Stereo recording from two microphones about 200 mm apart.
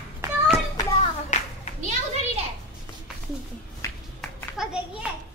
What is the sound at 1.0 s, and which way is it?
Clapping, 35° left (ahead or behind).